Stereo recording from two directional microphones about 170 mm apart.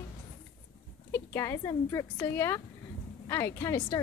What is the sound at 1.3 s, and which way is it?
A woman's voice, 15° left (ahead or behind).